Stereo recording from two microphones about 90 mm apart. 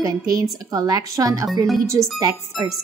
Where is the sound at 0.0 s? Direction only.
40° right (ahead or behind).